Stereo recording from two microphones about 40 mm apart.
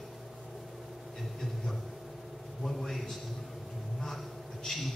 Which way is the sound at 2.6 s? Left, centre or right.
Centre.